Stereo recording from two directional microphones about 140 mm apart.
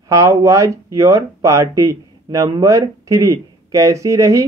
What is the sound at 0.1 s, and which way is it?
Speech, 20° right (ahead or behind).